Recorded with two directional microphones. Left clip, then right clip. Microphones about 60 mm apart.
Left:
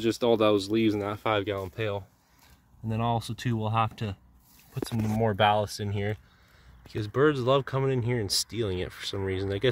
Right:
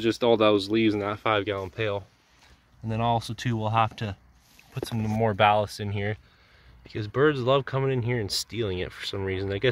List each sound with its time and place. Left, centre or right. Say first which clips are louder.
0.0 s speech: right 2 dB; centre
1.2 s speech: right 2 dB; left
1.8 s speech: right 3 dB; centre
5.4 s speech: right 3 dB; left